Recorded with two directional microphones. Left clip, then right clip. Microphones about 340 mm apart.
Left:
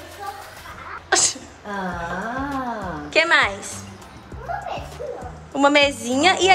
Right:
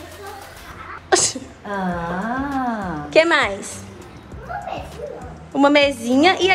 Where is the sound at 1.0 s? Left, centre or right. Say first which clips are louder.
Right 2 dB; centre.